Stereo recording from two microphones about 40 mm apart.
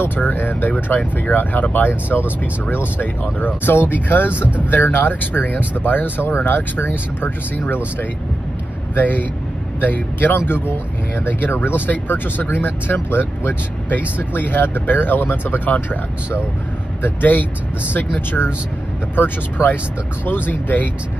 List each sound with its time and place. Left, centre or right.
0.2 s speech: left
4.4 s speech: right
4.6 s speech: left
10.3 s speech: left
17.0 s speech: left
19.1 s speech: left